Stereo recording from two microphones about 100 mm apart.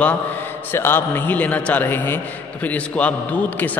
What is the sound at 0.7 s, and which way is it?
A man's voice, 20° left (ahead or behind).